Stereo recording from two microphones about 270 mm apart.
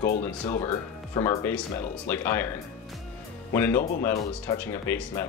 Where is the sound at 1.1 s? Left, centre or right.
Centre.